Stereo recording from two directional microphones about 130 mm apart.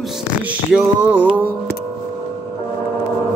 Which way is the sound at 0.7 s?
15° right (ahead or behind).